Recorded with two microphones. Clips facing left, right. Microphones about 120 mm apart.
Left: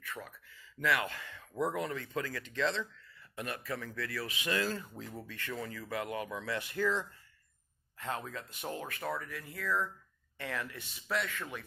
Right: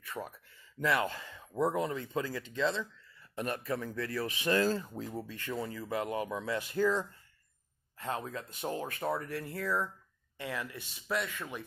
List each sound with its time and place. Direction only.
0.0 s a sound: 30° right (ahead or behind)
0.7 s speech: 35° right (ahead or behind)
4.6 s speech: 15° right (ahead or behind)
5.1 s speech: 30° right (ahead or behind)
8.0 s speech: 30° right (ahead or behind)